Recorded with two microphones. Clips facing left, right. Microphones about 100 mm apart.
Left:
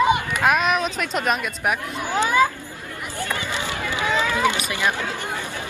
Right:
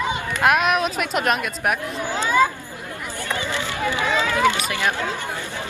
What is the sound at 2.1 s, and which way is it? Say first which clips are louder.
Speech: even; 15° left (ahead or behind).